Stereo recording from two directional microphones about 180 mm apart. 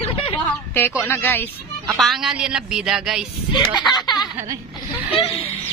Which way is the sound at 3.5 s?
25° left (ahead or behind).